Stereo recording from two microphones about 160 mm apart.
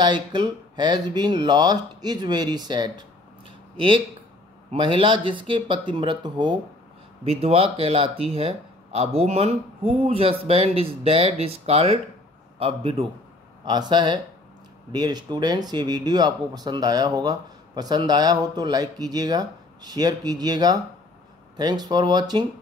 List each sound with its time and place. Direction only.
0.0 s speech: 30° right (ahead or behind)
7.2 s speech: 40° right (ahead or behind)